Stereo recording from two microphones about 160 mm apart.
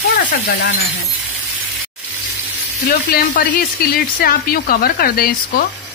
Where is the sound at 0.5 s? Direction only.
80° left.